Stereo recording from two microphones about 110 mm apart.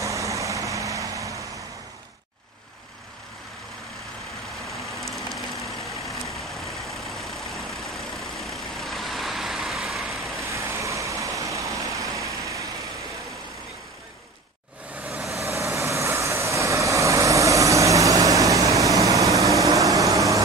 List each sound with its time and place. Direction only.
0.0 s vehicle: 30° right (ahead or behind)
6.5 s vehicle: centre (ahead or behind)
10.5 s vehicle: 25° right (ahead or behind)
15.0 s vehicle: 5° right (ahead or behind)
15.4 s vehicle: 25° right (ahead or behind)